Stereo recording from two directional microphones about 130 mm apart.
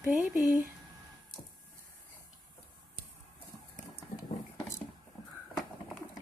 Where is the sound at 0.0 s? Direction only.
20° right (ahead or behind).